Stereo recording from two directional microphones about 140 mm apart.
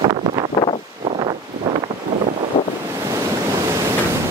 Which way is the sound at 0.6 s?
25° left (ahead or behind).